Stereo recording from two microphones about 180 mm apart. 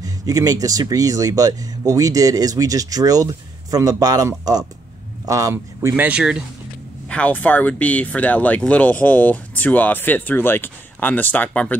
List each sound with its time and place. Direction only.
0.0 s speech: 20° right (ahead or behind)
7.1 s speech: 5° left (ahead or behind)